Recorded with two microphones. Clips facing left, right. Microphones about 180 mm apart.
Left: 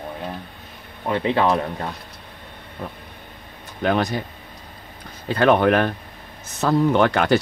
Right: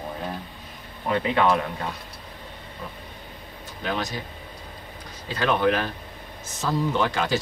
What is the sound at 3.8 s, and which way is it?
Speech, 55° left (ahead or behind).